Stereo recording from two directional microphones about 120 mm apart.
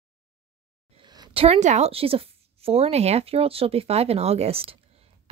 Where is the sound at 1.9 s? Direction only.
55° right (ahead or behind).